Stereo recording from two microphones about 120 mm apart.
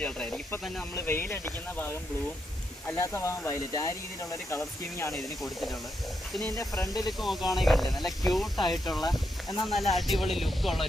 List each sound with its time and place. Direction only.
0.0 s speech: 5° left (ahead or behind)
0.9 s speech: 20° left (ahead or behind)
6.5 s speech: 30° left (ahead or behind)
7.1 s speech: centre (ahead or behind)